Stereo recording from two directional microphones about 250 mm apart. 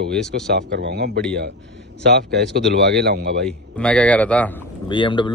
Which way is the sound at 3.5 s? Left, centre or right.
Centre.